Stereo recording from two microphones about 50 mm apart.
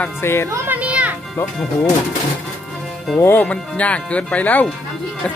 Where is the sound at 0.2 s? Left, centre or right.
Left.